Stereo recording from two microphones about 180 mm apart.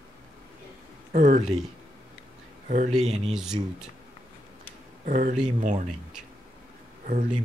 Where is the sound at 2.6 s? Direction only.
45° right (ahead or behind).